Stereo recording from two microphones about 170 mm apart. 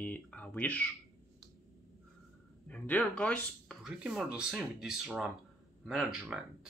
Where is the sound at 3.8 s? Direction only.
5° right (ahead or behind).